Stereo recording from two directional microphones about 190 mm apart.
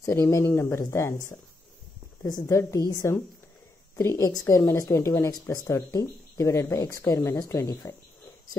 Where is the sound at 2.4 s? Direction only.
15° left (ahead or behind).